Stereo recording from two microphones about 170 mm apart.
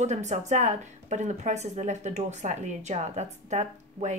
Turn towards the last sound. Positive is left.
turn(degrees=-40)  # may be behind; listen again after turning